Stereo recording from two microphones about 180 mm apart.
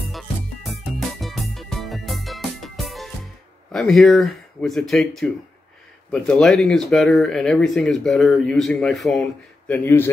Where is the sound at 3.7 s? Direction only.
Centre (ahead or behind).